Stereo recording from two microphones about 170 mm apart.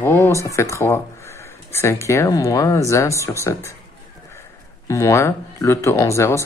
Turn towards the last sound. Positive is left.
turn(degrees=15)  # may be behind; listen again after turning